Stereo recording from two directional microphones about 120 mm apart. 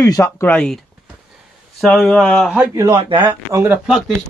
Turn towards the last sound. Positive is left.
turn(degrees=-5)  # may be behind; listen again after turning